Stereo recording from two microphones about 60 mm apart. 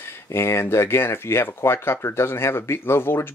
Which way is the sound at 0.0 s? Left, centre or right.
Left.